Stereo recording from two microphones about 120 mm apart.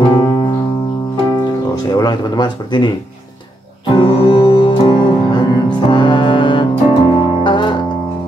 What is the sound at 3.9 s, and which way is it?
Music, 50° left (ahead or behind).